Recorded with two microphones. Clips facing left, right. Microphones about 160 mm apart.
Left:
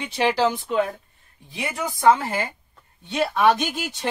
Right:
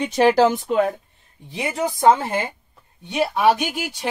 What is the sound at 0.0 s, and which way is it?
Speech, 45° right (ahead or behind).